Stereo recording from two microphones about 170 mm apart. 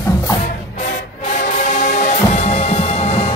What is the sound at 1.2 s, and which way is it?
Music, 45° left (ahead or behind).